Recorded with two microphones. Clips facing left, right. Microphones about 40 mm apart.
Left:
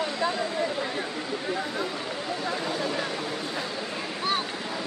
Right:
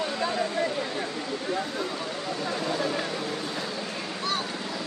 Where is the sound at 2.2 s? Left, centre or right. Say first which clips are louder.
Left 1 dB; centre.